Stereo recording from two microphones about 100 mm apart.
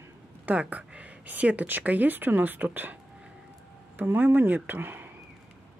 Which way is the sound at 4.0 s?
20° right (ahead or behind).